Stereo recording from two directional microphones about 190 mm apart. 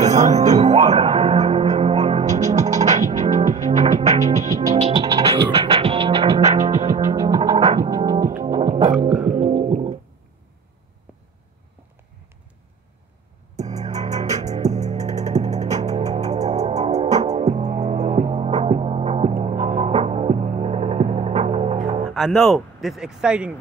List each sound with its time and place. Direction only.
0.0 s music: 40° right (ahead or behind)
6.7 s music: 15° right (ahead or behind); by 9.9 s 35° right (ahead or behind)
13.6 s music: 35° right (ahead or behind)
19.3 s hum: 40° right (ahead or behind)
22.1 s speech: centre (ahead or behind)